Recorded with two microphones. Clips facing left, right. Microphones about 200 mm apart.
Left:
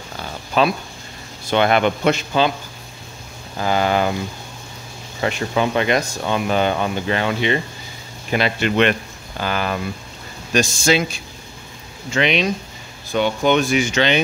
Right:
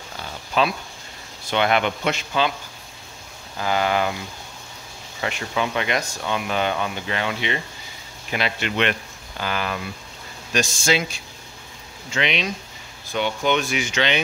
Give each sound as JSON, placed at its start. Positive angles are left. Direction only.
{"t": 0.6, "sound": "speech", "side_deg": 45}
{"t": 3.5, "sound": "speech", "side_deg": 35}
{"t": 5.2, "sound": "speech", "side_deg": 40}
{"t": 12.1, "sound": "speech", "side_deg": 45}